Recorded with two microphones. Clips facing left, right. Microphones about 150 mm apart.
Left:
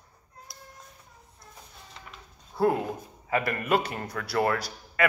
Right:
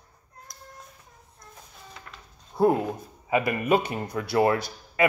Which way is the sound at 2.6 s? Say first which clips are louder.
Right 3 dB; 20° right (ahead or behind).